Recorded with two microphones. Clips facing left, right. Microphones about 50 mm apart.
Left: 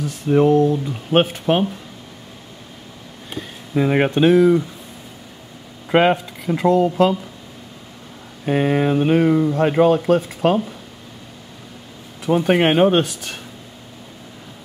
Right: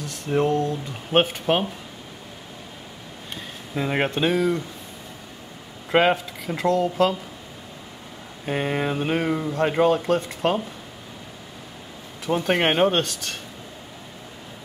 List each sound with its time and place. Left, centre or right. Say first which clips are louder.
0.0 s speech: left 7 dB; centre
3.7 s speech: left 7 dB; centre
5.9 s speech: left 4 dB; centre
8.5 s speech: left 7 dB; centre
12.3 s speech: left 5 dB; centre